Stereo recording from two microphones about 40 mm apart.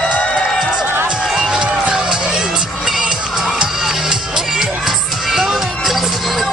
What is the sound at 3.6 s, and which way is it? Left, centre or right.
Music, centre.